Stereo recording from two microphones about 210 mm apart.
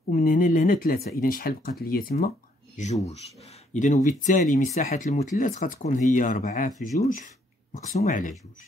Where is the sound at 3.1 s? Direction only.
30° left (ahead or behind).